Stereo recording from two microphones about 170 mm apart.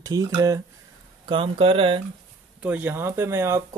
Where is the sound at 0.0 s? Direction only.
20° right (ahead or behind).